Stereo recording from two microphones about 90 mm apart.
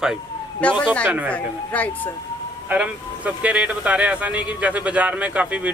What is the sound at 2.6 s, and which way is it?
Speech, 15° right (ahead or behind).